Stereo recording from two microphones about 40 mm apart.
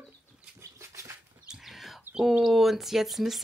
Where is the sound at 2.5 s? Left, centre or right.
Centre.